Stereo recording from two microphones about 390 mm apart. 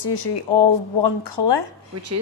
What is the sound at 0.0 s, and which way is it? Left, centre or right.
A woman's voice, left.